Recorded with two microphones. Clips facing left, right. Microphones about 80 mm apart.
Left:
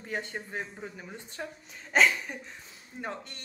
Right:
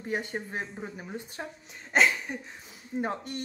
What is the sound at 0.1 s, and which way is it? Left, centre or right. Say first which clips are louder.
Speech: right 3 dB; centre.